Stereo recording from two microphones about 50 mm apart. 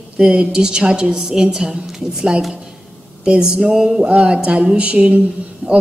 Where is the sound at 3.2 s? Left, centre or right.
Centre.